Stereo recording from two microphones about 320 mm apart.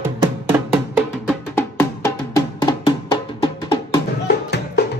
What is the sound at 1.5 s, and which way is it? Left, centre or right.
Music, centre.